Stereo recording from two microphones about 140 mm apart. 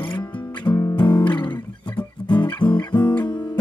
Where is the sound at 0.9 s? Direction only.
35° left (ahead or behind).